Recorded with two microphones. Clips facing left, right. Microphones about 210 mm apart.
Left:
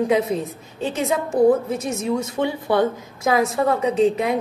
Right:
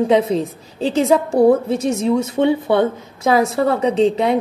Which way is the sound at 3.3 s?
30° right (ahead or behind).